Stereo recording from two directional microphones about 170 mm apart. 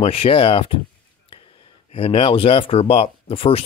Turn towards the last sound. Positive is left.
turn(degrees=35)  # may be behind; listen again after turning